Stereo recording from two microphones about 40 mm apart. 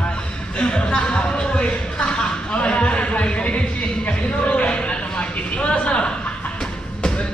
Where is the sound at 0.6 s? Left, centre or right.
Left.